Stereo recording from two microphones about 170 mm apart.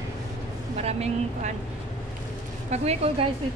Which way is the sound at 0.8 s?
40° right (ahead or behind).